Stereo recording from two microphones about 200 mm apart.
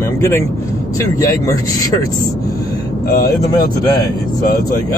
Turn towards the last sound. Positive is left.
turn(degrees=20)  # may be behind; listen again after turning